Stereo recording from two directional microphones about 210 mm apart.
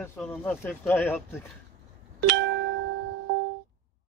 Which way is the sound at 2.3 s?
55° right (ahead or behind).